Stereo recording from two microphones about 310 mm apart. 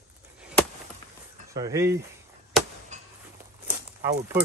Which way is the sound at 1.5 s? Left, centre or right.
Centre.